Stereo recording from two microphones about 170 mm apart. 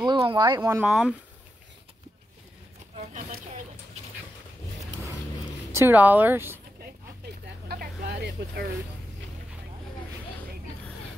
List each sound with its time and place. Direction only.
0.0 s speech: 25° right (ahead or behind)
0.6 s speech: 10° right (ahead or behind)
5.7 s speech: 15° right (ahead or behind)
7.6 s vehicle: 65° right (ahead or behind)